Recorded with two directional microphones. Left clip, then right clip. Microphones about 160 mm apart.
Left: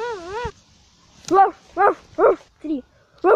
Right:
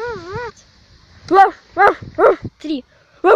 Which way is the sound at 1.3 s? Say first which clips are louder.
Right 5 dB; 10° right (ahead or behind).